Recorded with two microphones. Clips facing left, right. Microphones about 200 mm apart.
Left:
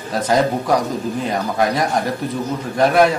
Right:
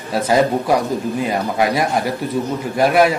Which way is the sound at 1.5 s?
10° right (ahead or behind).